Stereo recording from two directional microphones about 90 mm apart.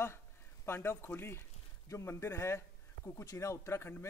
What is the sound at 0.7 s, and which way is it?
A man's voice, 25° left (ahead or behind).